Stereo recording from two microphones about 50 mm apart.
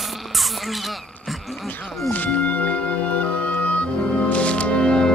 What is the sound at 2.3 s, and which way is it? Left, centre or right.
Music, left.